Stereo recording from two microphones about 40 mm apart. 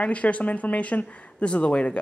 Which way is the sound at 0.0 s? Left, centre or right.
Left.